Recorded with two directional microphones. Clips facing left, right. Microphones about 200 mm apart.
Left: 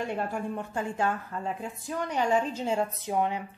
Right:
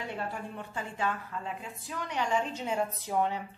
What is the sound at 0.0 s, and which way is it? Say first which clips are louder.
A woman's voice: left 6 dB; 50° left (ahead or behind).